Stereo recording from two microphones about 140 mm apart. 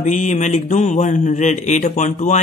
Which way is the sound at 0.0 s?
60° left (ahead or behind).